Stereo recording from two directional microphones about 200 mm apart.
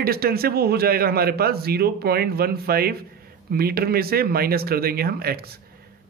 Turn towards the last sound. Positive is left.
turn(degrees=-50)  # may be behind; listen again after turning